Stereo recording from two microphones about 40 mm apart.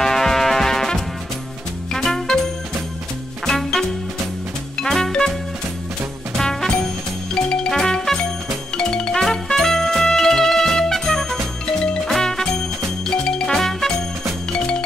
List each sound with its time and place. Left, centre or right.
0.0 s music: centre
6.3 s music: centre